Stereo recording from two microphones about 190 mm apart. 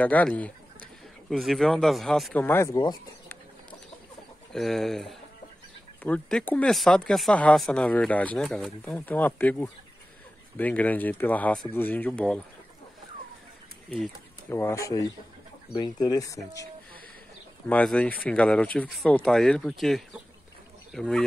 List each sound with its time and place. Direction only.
0.0 s speech: 10° left (ahead or behind)
2.4 s speech: 10° left (ahead or behind)
4.5 s speech: centre (ahead or behind)
13.8 s speech: centre (ahead or behind)
14.5 s speech: 15° left (ahead or behind)
17.6 s speech: 5° left (ahead or behind)